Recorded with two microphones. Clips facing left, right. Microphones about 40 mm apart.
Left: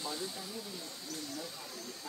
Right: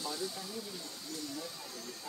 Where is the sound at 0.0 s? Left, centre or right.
Centre.